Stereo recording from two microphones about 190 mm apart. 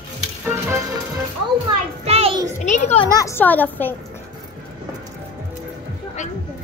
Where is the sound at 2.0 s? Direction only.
35° right (ahead or behind).